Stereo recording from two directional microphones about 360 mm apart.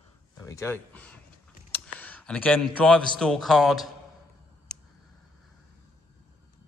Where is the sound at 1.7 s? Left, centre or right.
Centre.